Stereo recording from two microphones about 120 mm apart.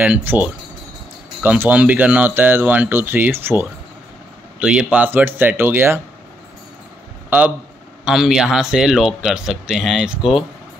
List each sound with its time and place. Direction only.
0.0 s speech: 15° right (ahead or behind)
4.6 s a man's voice: 10° right (ahead or behind)
7.2 s speech: 15° right (ahead or behind)
8.0 s a man's voice: 5° right (ahead or behind)